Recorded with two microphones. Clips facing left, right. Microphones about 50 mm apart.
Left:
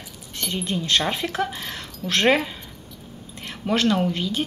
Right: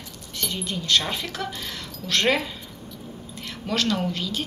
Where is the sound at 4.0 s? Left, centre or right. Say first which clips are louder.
Left 4 dB; left.